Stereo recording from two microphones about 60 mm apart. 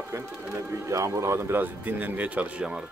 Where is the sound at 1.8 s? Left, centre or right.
Right.